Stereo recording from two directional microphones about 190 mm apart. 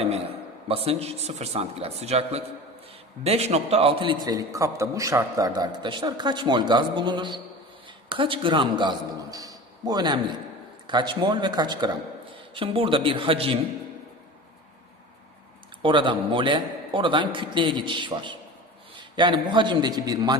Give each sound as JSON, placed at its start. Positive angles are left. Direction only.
{"t": 0.0, "sound": "a man's voice", "side_deg": -30}
{"t": 15.8, "sound": "a man's voice", "side_deg": -25}